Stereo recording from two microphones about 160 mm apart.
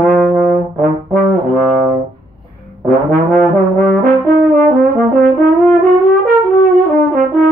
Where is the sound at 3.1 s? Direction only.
60° right (ahead or behind).